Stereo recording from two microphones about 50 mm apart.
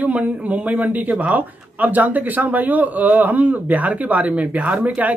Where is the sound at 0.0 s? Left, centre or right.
Right.